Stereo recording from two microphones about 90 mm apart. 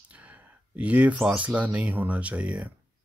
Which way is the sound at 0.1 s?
15° right (ahead or behind).